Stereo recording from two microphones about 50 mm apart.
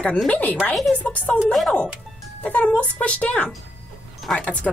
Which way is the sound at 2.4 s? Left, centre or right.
Left.